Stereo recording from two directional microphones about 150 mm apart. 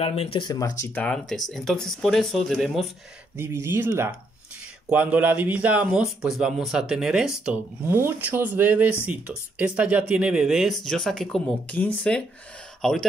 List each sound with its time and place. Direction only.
0.0 s speech: 45° left (ahead or behind)
0.4 s speech: 25° left (ahead or behind)
1.0 s speech: 5° left (ahead or behind)
3.3 s speech: 15° right (ahead or behind); by 13.0 s centre (ahead or behind)